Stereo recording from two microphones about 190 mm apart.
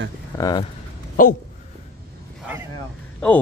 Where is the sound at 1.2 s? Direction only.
45° left (ahead or behind).